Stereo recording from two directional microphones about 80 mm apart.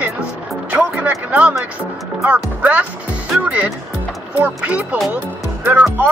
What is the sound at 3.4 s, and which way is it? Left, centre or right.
Music, centre.